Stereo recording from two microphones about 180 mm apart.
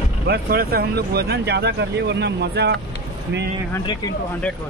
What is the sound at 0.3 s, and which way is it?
Speech, 60° right (ahead or behind).